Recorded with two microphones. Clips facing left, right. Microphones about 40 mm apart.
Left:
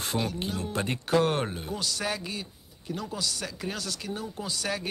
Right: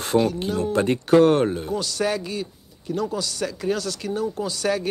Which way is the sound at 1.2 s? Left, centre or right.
Centre.